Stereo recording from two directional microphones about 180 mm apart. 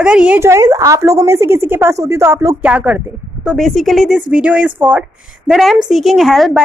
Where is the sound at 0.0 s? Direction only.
5° right (ahead or behind).